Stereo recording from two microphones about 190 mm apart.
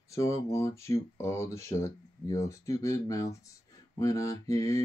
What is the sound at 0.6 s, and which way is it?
Mantra, 15° left (ahead or behind).